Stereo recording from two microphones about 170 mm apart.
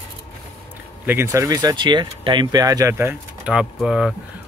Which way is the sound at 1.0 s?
15° right (ahead or behind).